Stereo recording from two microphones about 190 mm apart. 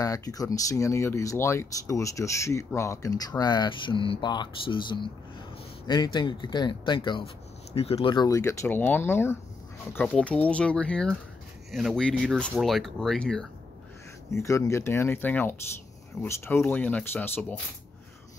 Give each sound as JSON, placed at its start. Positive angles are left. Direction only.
{"t": 0.0, "sound": "speech", "side_deg": 20}
{"t": 14.3, "sound": "speech", "side_deg": 15}